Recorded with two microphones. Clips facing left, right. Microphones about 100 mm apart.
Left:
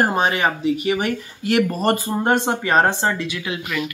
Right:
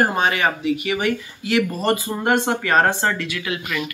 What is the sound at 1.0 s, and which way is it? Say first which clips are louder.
Speech: right 1 dB; 50° left (ahead or behind).